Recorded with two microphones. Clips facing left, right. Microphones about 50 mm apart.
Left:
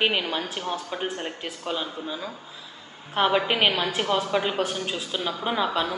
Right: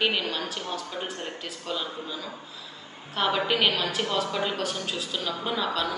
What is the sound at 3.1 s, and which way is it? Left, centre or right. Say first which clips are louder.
A man's voice: left 3 dB; left.